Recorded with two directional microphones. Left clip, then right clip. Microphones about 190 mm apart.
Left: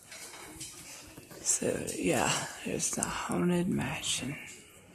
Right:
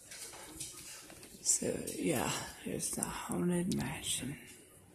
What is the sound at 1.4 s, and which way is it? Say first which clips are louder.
Speech: left 4 dB; 5° right (ahead or behind).